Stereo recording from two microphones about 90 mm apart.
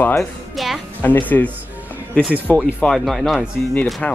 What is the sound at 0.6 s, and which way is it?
Speech, centre (ahead or behind).